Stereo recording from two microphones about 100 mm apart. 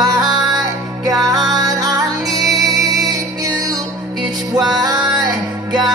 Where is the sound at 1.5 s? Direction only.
35° right (ahead or behind).